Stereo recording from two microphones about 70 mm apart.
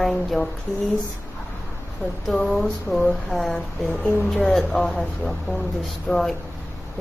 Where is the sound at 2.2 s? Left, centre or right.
Centre.